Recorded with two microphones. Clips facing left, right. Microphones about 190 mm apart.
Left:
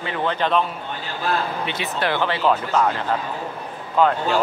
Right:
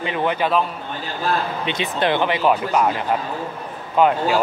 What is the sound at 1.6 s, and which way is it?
Speech, 20° right (ahead or behind).